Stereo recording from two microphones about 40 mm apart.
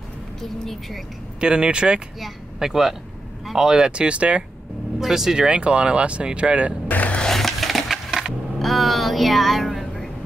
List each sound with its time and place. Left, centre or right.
0.4 s speech: centre
1.4 s speech: right
2.6 s speech: centre; by 4.5 s right
5.0 s speech: centre; by 6.7 s right
6.9 s mechanisms: left
7.2 s skateboard: centre
8.5 s vehicle: centre